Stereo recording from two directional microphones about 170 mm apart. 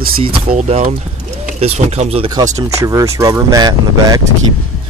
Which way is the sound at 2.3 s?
20° right (ahead or behind).